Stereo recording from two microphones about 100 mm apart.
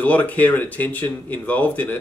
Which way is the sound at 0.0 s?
15° left (ahead or behind).